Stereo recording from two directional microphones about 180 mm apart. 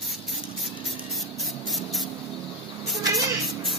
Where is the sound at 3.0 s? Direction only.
20° right (ahead or behind).